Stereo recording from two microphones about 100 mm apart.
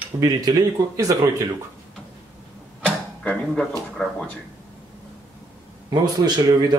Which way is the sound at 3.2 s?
10° left (ahead or behind).